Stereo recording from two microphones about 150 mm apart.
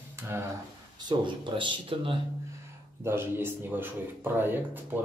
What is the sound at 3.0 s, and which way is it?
A man's voice, 15° right (ahead or behind).